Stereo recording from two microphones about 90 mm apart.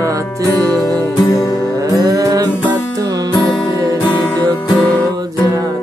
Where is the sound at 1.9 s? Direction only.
45° right (ahead or behind).